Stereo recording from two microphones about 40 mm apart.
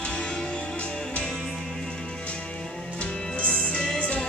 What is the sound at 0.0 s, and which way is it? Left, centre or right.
Music, left.